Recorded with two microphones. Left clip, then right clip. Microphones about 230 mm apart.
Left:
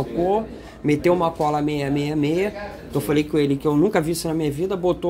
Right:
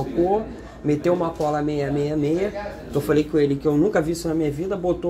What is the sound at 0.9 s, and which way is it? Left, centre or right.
Speech, left.